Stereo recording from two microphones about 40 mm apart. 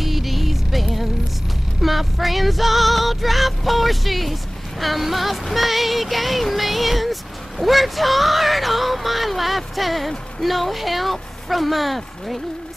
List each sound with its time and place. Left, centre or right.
0.0 s music: centre
1.8 s female singing: centre